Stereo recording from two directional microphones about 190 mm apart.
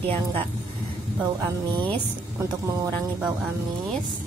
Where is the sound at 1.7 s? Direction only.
25° right (ahead or behind).